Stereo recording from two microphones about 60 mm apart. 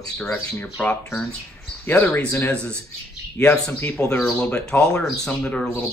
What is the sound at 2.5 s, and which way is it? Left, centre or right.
Speech, centre.